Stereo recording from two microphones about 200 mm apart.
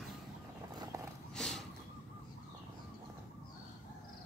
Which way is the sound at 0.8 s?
15° right (ahead or behind).